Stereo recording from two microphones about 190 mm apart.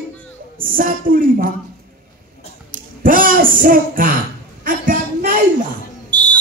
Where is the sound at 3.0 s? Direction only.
45° right (ahead or behind).